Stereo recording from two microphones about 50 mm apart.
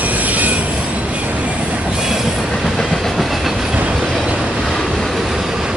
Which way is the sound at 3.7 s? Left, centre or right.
Right.